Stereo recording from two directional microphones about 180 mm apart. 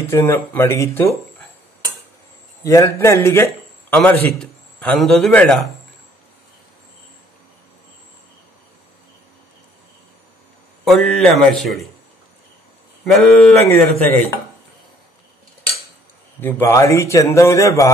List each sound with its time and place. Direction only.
0.1 s a man's voice: 15° left (ahead or behind)
2.6 s a man's voice: 15° left (ahead or behind)
10.9 s a man's voice: centre (ahead or behind)
13.0 s a man's voice: centre (ahead or behind)
16.3 s a man's voice: 10° left (ahead or behind)